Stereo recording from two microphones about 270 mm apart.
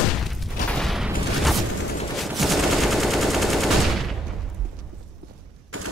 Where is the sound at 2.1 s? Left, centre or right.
Centre.